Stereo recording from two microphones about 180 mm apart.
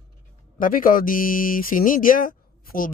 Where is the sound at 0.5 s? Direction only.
50° left (ahead or behind).